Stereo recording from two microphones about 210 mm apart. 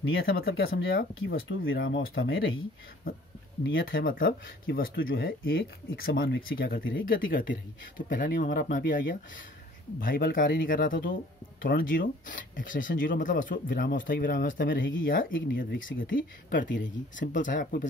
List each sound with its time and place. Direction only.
0.0 s speech: 65° left (ahead or behind)
0.4 s speech: 45° left (ahead or behind); by 2.6 s 65° left (ahead or behind)
3.8 s speech: 45° left (ahead or behind); by 7.1 s 65° left (ahead or behind)
8.1 s speech: 40° left (ahead or behind)